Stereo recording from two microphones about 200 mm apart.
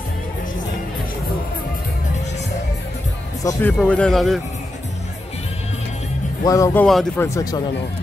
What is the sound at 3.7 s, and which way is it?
Speech, 5° left (ahead or behind).